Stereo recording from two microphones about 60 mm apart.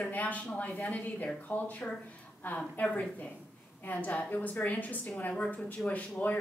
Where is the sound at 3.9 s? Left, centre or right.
Left.